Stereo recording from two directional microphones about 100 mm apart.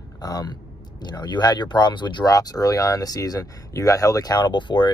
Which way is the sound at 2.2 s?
35° left (ahead or behind).